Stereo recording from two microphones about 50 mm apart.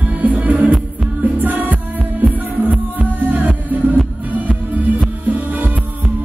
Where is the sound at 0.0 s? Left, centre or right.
Right.